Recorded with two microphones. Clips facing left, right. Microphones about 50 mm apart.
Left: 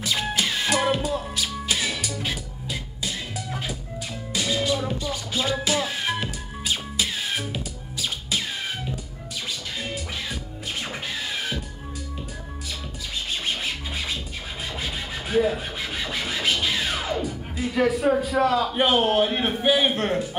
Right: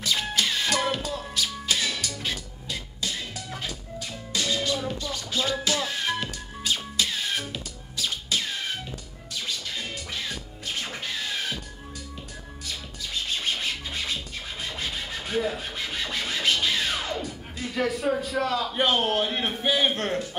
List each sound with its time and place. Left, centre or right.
0.0 s music: centre
9.8 s music: centre
13.3 s scratching: centre
14.7 s rub: centre